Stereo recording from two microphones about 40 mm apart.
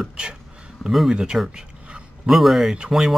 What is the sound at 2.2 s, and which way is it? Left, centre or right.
Speech, centre.